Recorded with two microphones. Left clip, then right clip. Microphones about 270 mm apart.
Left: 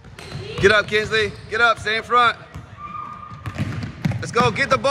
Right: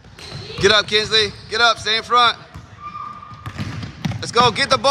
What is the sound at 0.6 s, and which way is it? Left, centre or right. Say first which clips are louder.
Speech: right 1 dB; centre.